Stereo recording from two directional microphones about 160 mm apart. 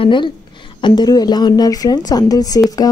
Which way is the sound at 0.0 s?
30° left (ahead or behind).